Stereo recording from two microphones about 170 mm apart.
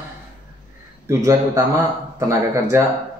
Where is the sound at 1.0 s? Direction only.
20° right (ahead or behind).